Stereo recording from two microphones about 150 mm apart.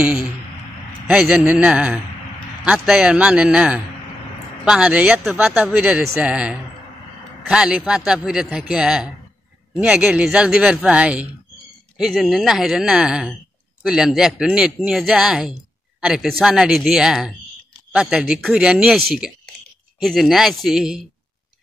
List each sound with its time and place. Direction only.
0.0 s a man's voice: 5° right (ahead or behind)